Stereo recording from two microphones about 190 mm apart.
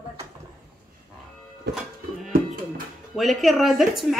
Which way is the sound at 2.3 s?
50° right (ahead or behind).